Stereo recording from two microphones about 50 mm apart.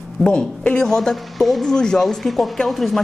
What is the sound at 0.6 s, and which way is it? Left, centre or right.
Speech, left.